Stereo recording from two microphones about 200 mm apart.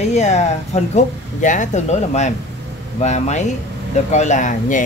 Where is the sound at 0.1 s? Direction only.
35° left (ahead or behind).